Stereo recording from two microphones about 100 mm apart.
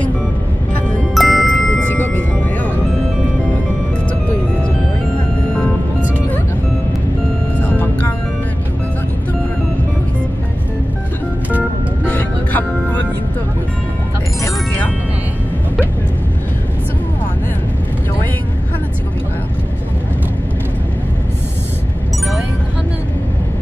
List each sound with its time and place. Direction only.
1.1 s music: centre (ahead or behind)
1.7 s music: 15° left (ahead or behind)
7.5 s music: 15° left (ahead or behind)
12.1 s music: 15° left (ahead or behind)